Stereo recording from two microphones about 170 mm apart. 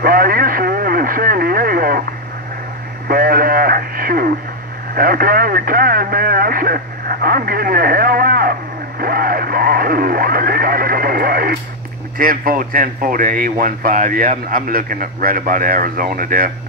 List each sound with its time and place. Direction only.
0.0 s speech: 60° right (ahead or behind)
3.1 s a man's voice: 60° right (ahead or behind)